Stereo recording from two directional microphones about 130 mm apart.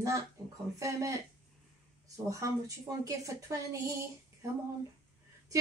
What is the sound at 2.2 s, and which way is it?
A woman's voice, 25° right (ahead or behind).